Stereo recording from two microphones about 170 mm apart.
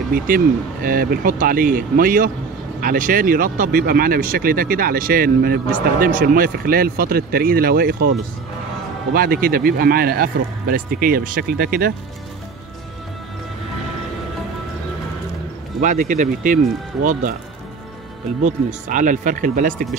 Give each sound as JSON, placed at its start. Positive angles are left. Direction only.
{"t": 0.3, "sound": "speech", "side_deg": -55}
{"t": 9.1, "sound": "speech", "side_deg": -60}
{"t": 15.8, "sound": "speech", "side_deg": -50}
{"t": 18.4, "sound": "speech", "side_deg": -45}